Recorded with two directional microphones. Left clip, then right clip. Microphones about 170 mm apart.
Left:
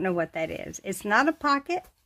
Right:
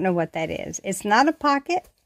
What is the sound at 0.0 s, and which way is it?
Speech, 35° right (ahead or behind).